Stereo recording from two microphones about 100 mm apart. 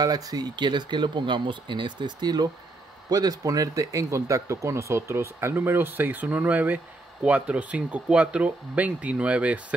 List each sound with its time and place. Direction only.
0.0 s speech: 40° right (ahead or behind); by 9.8 s 15° right (ahead or behind)